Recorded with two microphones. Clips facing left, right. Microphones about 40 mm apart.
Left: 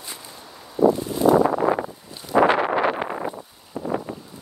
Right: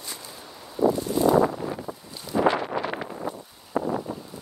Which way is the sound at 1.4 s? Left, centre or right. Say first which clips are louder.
Left 10 dB; left.